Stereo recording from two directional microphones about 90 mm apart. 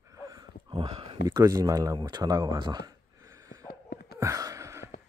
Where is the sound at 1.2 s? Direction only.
40° right (ahead or behind); by 2.8 s 60° right (ahead or behind).